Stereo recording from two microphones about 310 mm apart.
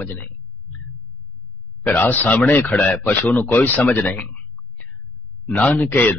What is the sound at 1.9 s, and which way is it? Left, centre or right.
Speech, centre.